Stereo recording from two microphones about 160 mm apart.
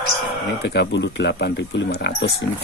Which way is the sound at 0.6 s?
90° left.